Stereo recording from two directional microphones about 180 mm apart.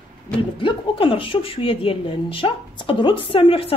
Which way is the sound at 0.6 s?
25° left (ahead or behind).